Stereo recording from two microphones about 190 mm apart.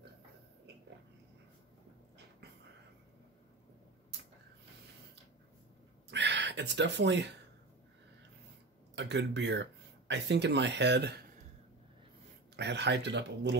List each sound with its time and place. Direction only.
6.0 s gasp: 65° right (ahead or behind)
8.9 s speech: 65° right (ahead or behind)
12.5 s speech: 65° right (ahead or behind)